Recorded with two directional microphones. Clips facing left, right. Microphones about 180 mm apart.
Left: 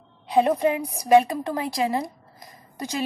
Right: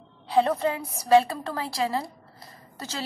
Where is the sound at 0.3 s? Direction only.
15° left (ahead or behind).